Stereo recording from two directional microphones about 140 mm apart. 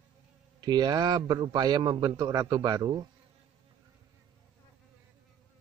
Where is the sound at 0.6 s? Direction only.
30° right (ahead or behind).